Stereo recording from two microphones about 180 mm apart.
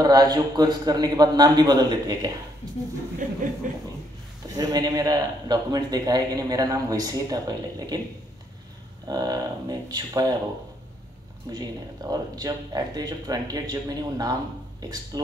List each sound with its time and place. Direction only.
0.0 s a man's voice: 20° right (ahead or behind)
3.2 s a sound: 45° right (ahead or behind)
4.6 s a man's voice: 20° right (ahead or behind)
9.0 s a man's voice: 20° right (ahead or behind)
11.5 s a man's voice: 20° right (ahead or behind)